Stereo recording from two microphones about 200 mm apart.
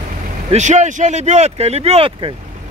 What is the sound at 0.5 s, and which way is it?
Speech, 35° right (ahead or behind).